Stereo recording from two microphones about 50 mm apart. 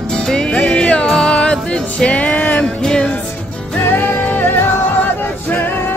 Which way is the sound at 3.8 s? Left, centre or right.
Left.